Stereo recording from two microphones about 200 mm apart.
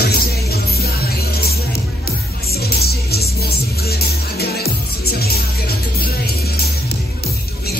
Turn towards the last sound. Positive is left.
turn(degrees=50)  # may be behind; listen again after turning